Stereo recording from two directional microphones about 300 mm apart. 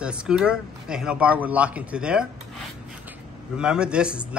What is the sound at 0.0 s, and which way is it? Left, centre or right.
Speech, centre.